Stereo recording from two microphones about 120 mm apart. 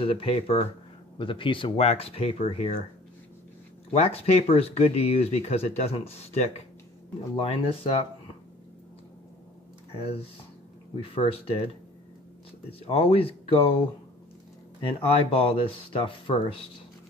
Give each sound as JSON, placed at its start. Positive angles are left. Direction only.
{"t": 0.0, "sound": "speech", "side_deg": 50}
{"t": 1.9, "sound": "speech", "side_deg": 55}
{"t": 3.9, "sound": "speech", "side_deg": 60}
{"t": 7.3, "sound": "speech", "side_deg": 50}
{"t": 11.0, "sound": "speech", "side_deg": 50}
{"t": 12.7, "sound": "speech", "side_deg": 55}
{"t": 15.0, "sound": "speech", "side_deg": 45}